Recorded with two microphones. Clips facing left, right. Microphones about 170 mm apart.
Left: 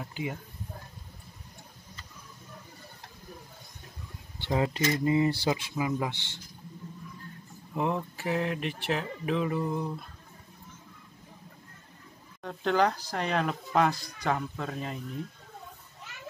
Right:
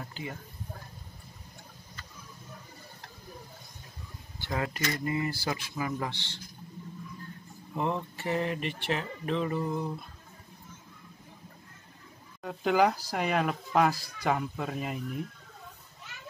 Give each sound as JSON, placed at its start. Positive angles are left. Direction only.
{"t": 0.0, "sound": "speech", "side_deg": 15}
{"t": 4.4, "sound": "speech", "side_deg": 20}
{"t": 7.7, "sound": "speech", "side_deg": 0}
{"t": 12.4, "sound": "speech", "side_deg": -5}